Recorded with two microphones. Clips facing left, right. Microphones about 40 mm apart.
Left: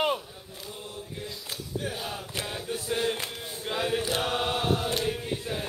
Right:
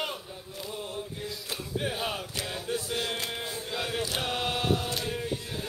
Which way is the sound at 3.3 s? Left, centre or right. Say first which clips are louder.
Right 3 dB; right.